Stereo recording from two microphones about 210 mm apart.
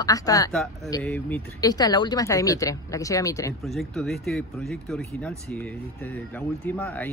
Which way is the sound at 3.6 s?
Centre (ahead or behind).